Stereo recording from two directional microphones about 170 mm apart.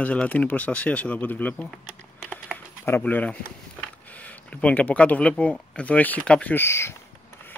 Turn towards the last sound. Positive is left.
turn(degrees=15)  # may be behind; listen again after turning